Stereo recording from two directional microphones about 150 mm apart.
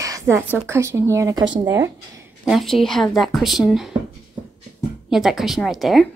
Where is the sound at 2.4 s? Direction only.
Centre (ahead or behind).